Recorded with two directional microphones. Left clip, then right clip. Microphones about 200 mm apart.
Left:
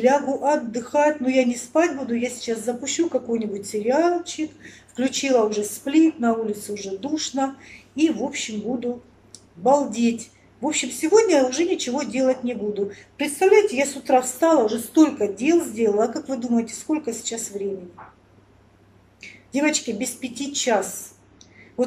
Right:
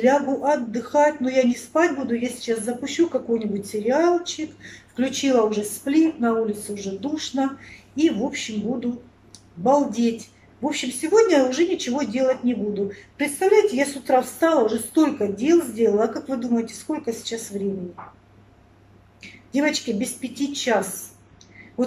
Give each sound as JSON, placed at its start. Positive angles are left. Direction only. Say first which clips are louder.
{"t": 0.0, "sound": "a woman's voice", "louder": "even", "side_deg": 0}
{"t": 19.2, "sound": "a woman's voice", "louder": "even", "side_deg": 0}